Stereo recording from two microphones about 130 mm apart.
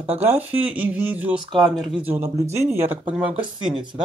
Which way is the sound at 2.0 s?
20° right (ahead or behind).